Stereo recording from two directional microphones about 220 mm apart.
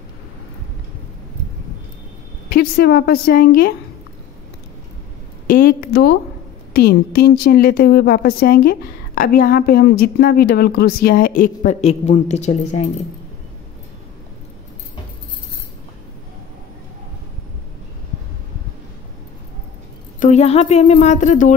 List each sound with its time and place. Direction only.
2.5 s a woman's voice: 45° left (ahead or behind)
5.5 s a woman's voice: 40° left (ahead or behind)
20.2 s a woman's voice: 30° left (ahead or behind)